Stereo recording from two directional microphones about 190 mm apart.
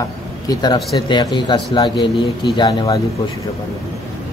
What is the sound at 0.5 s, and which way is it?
A man's voice, 20° left (ahead or behind).